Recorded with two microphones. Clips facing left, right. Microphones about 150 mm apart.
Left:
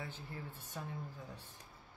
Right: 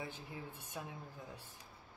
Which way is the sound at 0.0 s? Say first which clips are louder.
Right 1 dB; 15° right (ahead or behind).